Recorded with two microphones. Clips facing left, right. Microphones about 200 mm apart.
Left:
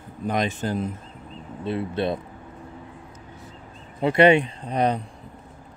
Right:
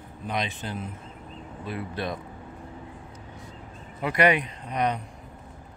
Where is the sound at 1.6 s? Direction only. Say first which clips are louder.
Left 7 dB; 25° left (ahead or behind).